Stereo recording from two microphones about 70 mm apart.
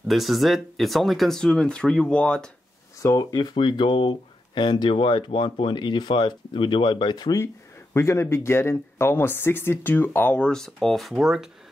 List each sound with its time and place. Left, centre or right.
0.1 s speech: centre
3.0 s speech: left
3.3 s speech: left
7.9 s speech: left; by 11.4 s centre